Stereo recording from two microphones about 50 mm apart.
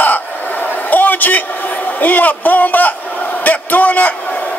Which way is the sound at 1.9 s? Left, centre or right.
Left.